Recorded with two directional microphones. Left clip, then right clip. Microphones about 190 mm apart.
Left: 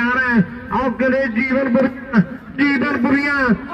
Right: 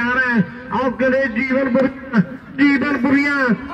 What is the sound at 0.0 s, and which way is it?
A man's voice, 35° left (ahead or behind).